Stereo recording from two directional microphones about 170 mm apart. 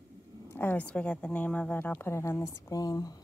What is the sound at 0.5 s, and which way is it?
A woman's voice, 10° left (ahead or behind).